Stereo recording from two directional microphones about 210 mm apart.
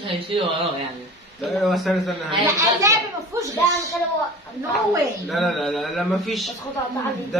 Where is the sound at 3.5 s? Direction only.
15° left (ahead or behind).